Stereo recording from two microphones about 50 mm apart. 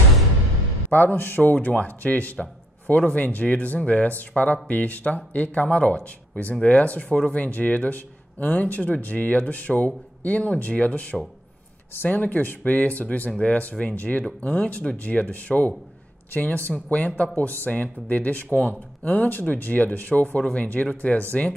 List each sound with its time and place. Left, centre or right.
0.8 s speech: left